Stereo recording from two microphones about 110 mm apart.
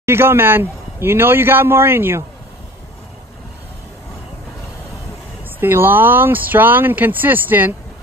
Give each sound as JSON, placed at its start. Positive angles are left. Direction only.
{"t": 0.0, "sound": "a man's voice", "side_deg": -20}
{"t": 5.6, "sound": "speech", "side_deg": -20}